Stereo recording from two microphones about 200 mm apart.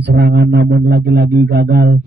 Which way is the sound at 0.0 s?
55° right (ahead or behind).